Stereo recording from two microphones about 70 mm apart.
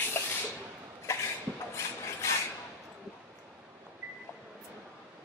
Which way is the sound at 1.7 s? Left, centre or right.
Left.